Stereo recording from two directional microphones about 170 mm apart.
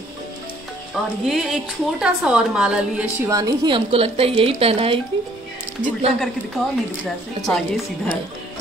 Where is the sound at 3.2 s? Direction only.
20° right (ahead or behind).